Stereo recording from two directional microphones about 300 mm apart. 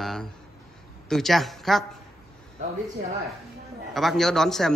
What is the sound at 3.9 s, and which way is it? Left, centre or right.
Speech, centre.